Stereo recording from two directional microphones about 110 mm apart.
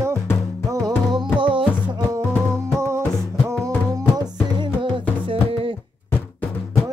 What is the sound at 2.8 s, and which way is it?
Music, 25° right (ahead or behind).